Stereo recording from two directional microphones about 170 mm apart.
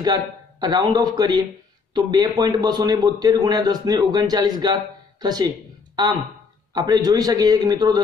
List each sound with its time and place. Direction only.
0.0 s a man's voice: 25° right (ahead or behind)
6.7 s a man's voice: 20° right (ahead or behind)